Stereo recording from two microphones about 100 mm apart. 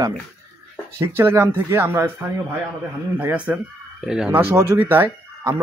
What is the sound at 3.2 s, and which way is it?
Speech, 15° right (ahead or behind).